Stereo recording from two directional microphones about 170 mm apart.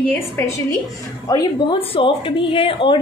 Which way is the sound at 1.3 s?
20° left (ahead or behind).